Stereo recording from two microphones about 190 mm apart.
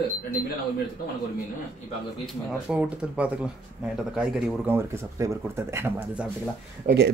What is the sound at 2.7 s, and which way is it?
Speech, 5° right (ahead or behind).